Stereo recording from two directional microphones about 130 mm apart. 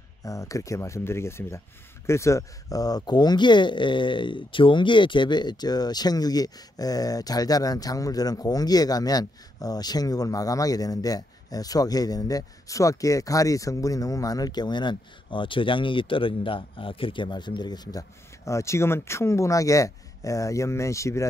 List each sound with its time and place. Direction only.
0.2 s speech: 25° left (ahead or behind)